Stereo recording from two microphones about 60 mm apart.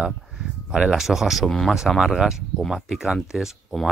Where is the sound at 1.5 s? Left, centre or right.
Centre.